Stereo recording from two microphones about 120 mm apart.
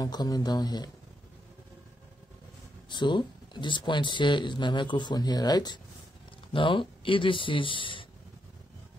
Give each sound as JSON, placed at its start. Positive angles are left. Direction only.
{"t": 0.0, "sound": "speech", "side_deg": 35}
{"t": 2.9, "sound": "speech", "side_deg": 40}